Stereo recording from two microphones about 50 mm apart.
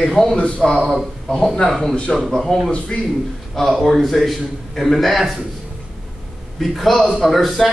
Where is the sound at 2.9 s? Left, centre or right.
Centre.